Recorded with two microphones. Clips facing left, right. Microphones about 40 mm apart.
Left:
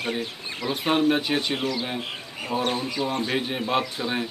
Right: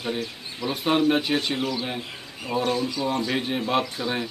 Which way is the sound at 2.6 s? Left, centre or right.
Left.